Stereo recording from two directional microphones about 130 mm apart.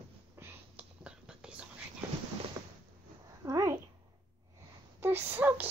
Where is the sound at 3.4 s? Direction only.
25° right (ahead or behind).